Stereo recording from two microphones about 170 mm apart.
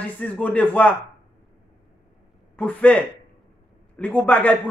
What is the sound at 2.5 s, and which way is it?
A man's voice, 5° left (ahead or behind).